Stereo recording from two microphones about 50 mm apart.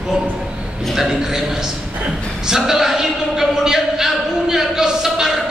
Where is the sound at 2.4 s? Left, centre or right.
Centre.